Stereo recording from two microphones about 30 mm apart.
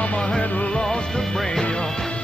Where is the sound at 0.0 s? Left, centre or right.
Left.